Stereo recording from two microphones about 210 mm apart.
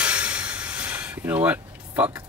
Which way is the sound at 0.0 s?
5° right (ahead or behind).